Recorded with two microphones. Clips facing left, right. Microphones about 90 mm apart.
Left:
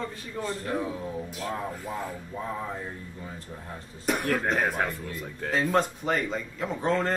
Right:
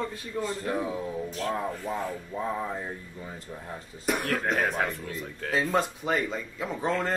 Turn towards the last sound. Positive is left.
turn(degrees=0)  # may be behind; listen again after turning